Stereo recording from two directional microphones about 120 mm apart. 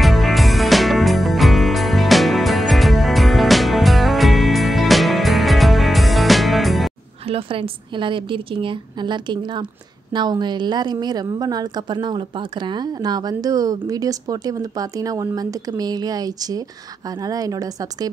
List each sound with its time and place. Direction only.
0.0 s music: centre (ahead or behind)
7.2 s a woman's voice: 50° right (ahead or behind); by 18.1 s 30° right (ahead or behind)